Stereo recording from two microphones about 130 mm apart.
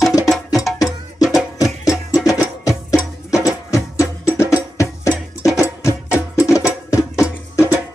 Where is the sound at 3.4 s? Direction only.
25° left (ahead or behind).